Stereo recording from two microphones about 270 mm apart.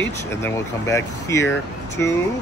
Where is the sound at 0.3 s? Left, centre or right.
Centre.